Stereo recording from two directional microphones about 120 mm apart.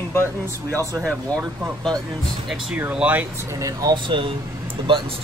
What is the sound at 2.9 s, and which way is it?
Speech, 10° right (ahead or behind).